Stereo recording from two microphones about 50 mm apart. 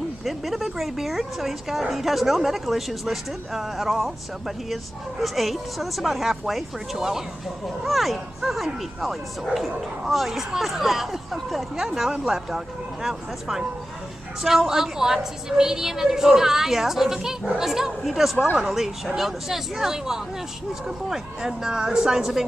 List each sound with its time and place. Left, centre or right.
0.2 s a woman's voice: centre